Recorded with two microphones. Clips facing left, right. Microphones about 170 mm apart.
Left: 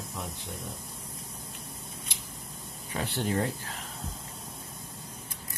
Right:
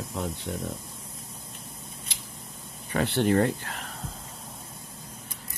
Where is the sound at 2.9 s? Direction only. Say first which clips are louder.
Right 7 dB; 70° right (ahead or behind).